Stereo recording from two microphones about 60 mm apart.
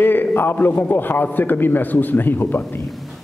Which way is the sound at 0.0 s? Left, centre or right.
Left.